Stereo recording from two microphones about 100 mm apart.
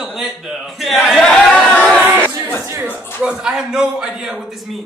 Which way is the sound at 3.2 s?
10° right (ahead or behind).